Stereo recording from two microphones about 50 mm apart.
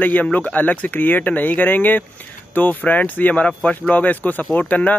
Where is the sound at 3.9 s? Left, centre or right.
Left.